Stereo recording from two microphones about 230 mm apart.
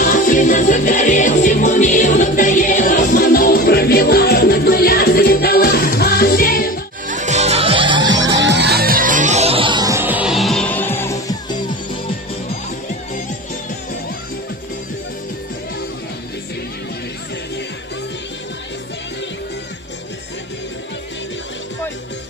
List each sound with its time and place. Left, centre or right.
0.0 s music: left
7.1 s music: right
8.1 s music: right; by 11.5 s centre